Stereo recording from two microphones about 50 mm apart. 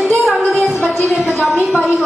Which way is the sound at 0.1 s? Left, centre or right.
Centre.